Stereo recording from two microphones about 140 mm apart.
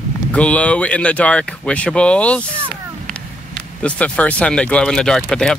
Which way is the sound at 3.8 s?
10° left (ahead or behind).